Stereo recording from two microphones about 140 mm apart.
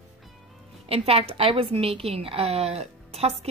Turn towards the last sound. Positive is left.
turn(degrees=-50)  # may be behind; listen again after turning